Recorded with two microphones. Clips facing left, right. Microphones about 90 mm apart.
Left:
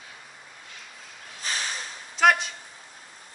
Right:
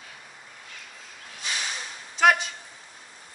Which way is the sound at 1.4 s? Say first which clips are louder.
Left 1 dB; 40° left (ahead or behind).